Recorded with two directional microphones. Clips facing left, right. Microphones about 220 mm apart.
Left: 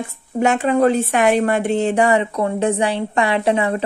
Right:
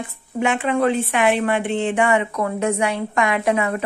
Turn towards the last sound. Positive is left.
turn(degrees=30)  # may be behind; listen again after turning